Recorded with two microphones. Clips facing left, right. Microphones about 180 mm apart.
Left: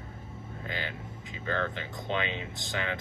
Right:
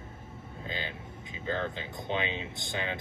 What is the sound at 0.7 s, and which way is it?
Speech, 20° right (ahead or behind).